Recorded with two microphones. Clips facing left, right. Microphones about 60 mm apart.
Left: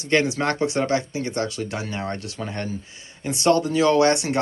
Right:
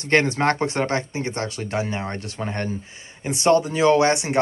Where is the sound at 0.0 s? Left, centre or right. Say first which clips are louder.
Right 2 dB; right.